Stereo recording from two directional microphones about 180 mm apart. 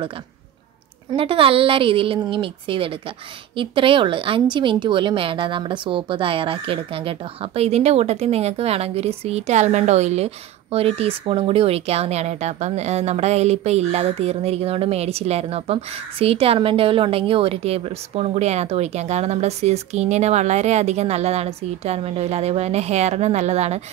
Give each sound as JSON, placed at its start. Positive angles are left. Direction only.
{"t": 1.1, "sound": "a woman's voice", "side_deg": -30}